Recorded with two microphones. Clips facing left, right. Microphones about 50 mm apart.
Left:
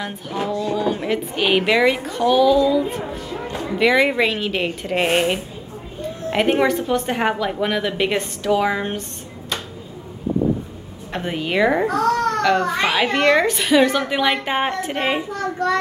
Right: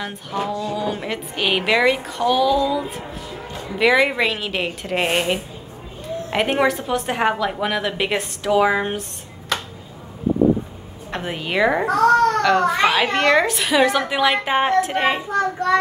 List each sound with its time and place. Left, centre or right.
0.0 s a child's voice: centre
11.1 s a child's voice: centre